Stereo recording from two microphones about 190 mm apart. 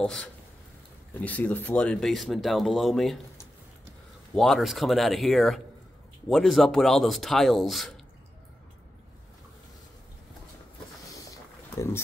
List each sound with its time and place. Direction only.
0.0 s speech: 5° left (ahead or behind)
4.4 s speech: centre (ahead or behind)
11.7 s speech: 15° left (ahead or behind)